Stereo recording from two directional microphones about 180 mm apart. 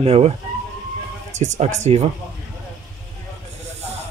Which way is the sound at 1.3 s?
40° right (ahead or behind).